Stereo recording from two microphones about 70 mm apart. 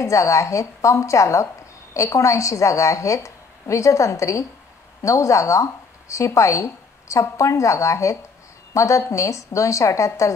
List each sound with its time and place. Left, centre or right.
0.0 s a woman's voice: left